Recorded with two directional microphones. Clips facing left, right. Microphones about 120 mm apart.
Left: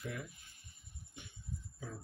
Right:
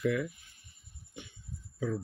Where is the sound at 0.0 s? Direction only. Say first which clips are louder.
Right 14 dB; 90° right.